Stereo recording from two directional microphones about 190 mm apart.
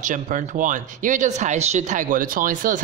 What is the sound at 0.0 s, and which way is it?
Speech, 45° right (ahead or behind).